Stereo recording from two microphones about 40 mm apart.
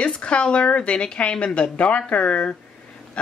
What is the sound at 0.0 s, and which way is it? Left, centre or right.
A woman's voice, left.